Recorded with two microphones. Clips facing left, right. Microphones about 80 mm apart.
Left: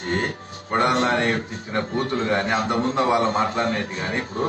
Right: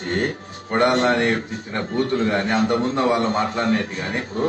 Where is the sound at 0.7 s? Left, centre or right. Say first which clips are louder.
Right 2 dB; right.